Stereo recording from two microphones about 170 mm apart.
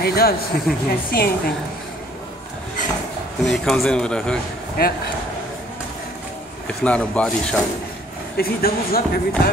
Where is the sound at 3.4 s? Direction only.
Centre (ahead or behind).